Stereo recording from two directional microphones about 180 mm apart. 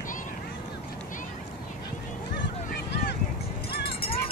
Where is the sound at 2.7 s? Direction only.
70° left (ahead or behind).